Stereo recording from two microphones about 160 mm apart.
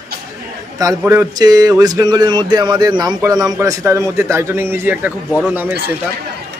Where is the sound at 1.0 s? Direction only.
15° right (ahead or behind).